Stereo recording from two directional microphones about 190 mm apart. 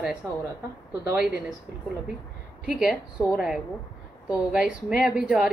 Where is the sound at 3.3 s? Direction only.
Centre (ahead or behind).